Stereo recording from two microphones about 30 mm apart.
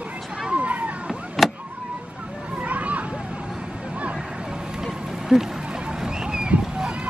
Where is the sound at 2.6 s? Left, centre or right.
Right.